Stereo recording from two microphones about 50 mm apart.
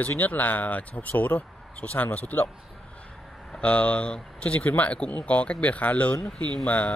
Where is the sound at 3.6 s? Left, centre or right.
Left.